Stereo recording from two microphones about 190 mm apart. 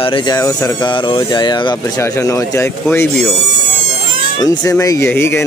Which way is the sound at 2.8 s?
5° left (ahead or behind).